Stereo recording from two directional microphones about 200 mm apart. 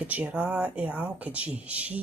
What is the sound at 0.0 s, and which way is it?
Speech, 5° right (ahead or behind).